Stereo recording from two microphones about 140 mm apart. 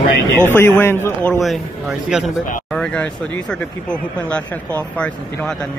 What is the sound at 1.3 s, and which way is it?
Speech, centre (ahead or behind).